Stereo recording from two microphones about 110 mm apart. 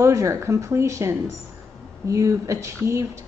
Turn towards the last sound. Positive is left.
turn(degrees=-25)  # may be behind; listen again after turning